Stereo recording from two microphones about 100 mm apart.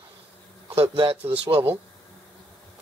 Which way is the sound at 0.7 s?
80° right.